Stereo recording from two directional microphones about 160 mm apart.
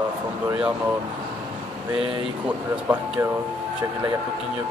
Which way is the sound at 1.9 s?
35° right (ahead or behind).